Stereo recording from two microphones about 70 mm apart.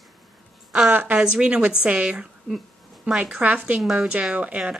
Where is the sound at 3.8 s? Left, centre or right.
Centre.